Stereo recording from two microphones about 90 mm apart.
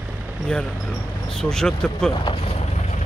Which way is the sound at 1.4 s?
5° left (ahead or behind).